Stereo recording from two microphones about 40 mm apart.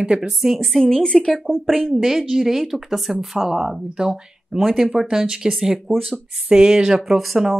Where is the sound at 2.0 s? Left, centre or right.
Centre.